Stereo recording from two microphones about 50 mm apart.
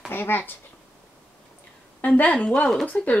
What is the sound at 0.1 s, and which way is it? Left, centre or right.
Speech, left.